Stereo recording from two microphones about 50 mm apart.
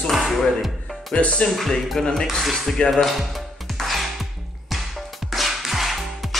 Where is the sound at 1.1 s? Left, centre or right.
Centre.